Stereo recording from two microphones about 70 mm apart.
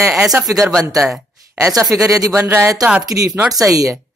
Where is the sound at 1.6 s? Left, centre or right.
Right.